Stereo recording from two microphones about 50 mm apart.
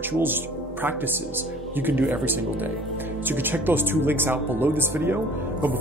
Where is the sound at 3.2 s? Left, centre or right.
Right.